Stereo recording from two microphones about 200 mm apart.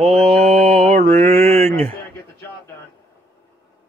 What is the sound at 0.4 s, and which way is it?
Mantra, 50° right (ahead or behind).